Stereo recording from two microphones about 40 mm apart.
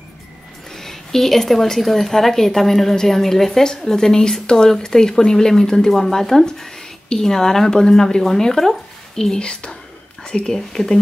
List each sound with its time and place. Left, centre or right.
0.7 s a woman's voice: centre
9.4 s speech: left